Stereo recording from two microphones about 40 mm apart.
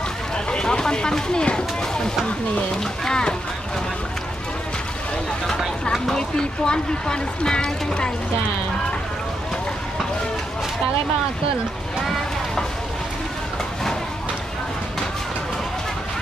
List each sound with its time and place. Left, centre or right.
0.5 s speech: left
6.0 s speech: centre